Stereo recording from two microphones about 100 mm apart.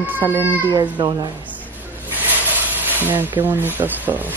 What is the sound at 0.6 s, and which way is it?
Speech, 50° right (ahead or behind).